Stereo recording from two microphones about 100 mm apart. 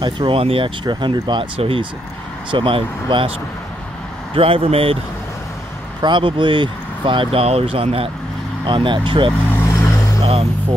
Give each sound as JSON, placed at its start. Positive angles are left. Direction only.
{"t": 0.0, "sound": "speech", "side_deg": -65}
{"t": 0.8, "sound": "speech", "side_deg": -50}
{"t": 1.6, "sound": "speech", "side_deg": -70}
{"t": 2.5, "sound": "speech", "side_deg": -55}
{"t": 6.0, "sound": "speech", "side_deg": -55}
{"t": 8.6, "sound": "speech", "side_deg": -55}
{"t": 9.5, "sound": "vehicle", "side_deg": 25}